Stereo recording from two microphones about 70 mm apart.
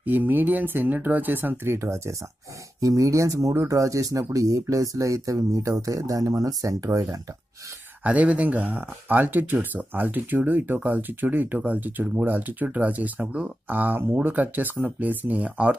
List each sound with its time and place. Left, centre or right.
0.0 s speech: right
8.0 s speech: right